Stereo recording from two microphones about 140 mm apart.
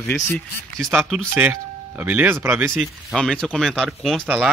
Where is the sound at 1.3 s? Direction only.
15° right (ahead or behind).